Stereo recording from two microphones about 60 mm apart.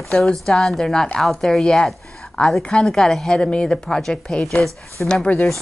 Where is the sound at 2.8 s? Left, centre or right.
Centre.